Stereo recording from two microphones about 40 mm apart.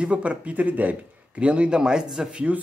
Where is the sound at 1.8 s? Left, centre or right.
Centre.